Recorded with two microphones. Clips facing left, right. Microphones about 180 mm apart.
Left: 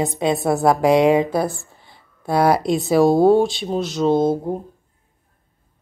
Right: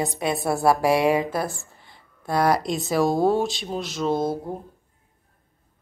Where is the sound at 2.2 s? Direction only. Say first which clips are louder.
Left 5 dB; 5° left (ahead or behind).